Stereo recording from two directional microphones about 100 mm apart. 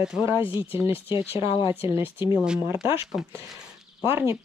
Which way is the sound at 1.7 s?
25° right (ahead or behind).